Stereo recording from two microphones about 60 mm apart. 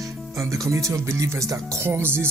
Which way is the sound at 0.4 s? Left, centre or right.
Right.